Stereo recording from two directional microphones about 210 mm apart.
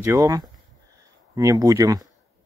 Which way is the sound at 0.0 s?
15° right (ahead or behind).